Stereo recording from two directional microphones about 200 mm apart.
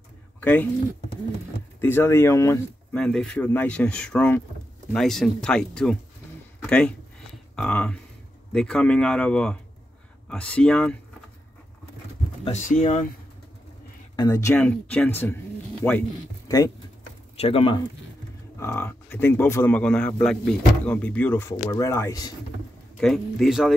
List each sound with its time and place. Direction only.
0.4 s speech: 10° left (ahead or behind)
1.8 s speech: 10° left (ahead or behind)
12.4 s speech: 40° left (ahead or behind)
14.1 s speech: 20° left (ahead or behind)
18.6 s speech: 10° left (ahead or behind)
22.9 s speech: centre (ahead or behind)